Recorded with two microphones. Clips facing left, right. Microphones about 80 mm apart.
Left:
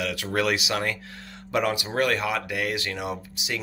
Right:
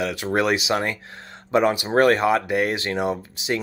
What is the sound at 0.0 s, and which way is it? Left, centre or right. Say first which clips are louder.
Speech: right 4 dB; right.